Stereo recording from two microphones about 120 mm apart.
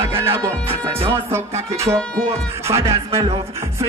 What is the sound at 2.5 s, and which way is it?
Music, 20° right (ahead or behind).